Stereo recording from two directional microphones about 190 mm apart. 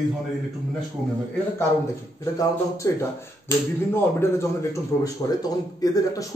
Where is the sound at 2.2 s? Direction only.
15° left (ahead or behind).